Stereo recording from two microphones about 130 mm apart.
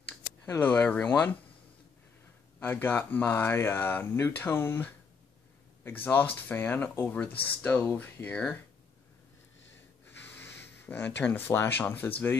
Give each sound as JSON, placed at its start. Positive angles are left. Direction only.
{"t": 0.6, "sound": "speech", "side_deg": 10}
{"t": 2.6, "sound": "speech", "side_deg": 15}
{"t": 10.3, "sound": "speech", "side_deg": 15}